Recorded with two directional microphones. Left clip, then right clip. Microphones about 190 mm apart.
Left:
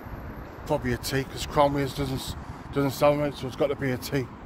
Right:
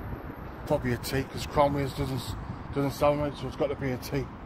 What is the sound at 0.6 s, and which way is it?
Speech, 15° left (ahead or behind).